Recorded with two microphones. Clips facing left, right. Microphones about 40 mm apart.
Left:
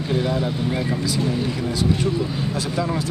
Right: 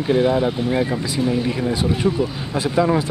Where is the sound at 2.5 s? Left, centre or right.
Right.